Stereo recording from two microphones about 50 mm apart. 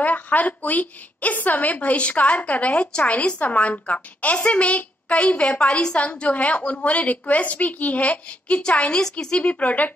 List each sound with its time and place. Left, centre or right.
0.0 s a woman's voice: left